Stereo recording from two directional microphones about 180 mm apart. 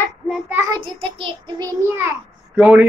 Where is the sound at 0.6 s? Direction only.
25° right (ahead or behind).